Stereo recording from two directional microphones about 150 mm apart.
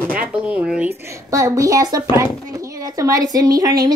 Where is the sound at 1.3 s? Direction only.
20° right (ahead or behind).